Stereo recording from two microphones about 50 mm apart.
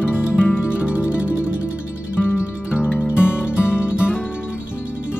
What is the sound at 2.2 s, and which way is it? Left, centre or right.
Music, left.